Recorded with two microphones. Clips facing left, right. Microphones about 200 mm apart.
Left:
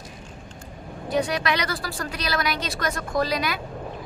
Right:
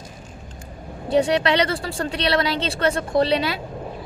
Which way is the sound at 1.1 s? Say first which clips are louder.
Right 6 dB; 30° right (ahead or behind).